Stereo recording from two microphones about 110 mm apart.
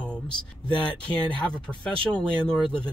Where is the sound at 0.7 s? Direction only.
10° left (ahead or behind).